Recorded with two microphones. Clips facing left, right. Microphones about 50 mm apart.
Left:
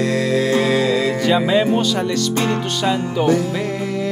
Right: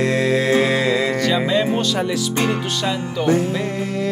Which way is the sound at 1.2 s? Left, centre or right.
Centre.